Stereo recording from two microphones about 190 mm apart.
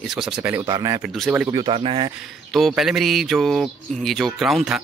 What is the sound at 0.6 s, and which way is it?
Speech, 15° right (ahead or behind).